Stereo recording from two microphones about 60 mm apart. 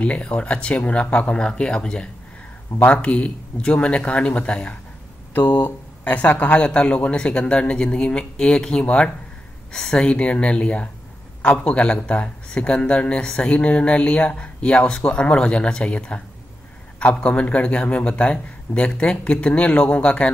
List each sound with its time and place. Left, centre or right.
0.0 s a man's voice: centre